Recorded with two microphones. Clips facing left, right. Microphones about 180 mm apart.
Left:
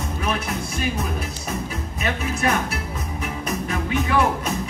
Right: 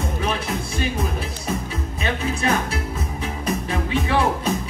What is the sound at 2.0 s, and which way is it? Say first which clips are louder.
Music: even; 30° right (ahead or behind).